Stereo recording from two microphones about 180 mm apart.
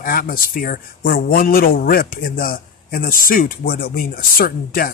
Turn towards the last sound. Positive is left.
turn(degrees=55)  # may be behind; listen again after turning